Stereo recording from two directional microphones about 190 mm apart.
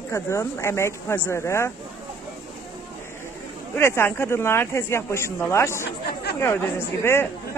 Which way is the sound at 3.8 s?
15° left (ahead or behind).